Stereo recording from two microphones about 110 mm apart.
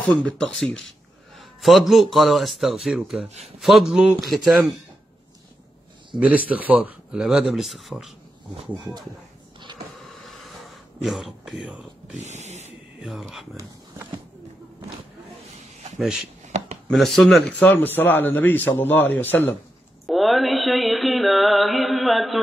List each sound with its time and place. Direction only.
0.0 s a man's voice: 10° left (ahead or behind)
6.1 s speech: 15° right (ahead or behind)
7.2 s a man's voice: centre (ahead or behind)
10.0 s a sound: centre (ahead or behind)
12.2 s speech: 90° right
13.0 s a man's voice: centre (ahead or behind)
16.0 s a man's voice: 5° right (ahead or behind); by 19.5 s 15° left (ahead or behind)
20.1 s a sound: centre (ahead or behind)